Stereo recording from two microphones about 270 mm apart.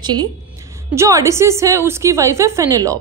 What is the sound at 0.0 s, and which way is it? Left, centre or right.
A woman's voice, centre.